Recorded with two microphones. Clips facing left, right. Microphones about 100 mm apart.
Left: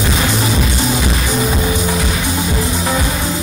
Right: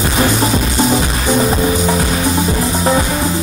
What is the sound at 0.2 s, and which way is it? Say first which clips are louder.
Music: right 3 dB; 35° right (ahead or behind).